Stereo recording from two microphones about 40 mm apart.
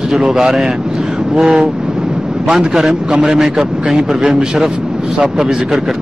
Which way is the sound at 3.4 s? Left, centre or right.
Centre.